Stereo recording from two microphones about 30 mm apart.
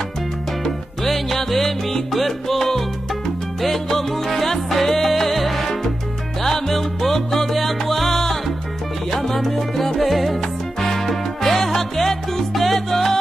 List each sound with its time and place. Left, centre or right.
0.7 s music: centre
3.9 s music: centre
9.1 s salsa music: centre
9.9 s music: centre